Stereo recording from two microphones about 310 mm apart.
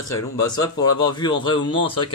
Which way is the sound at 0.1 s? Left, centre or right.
Centre.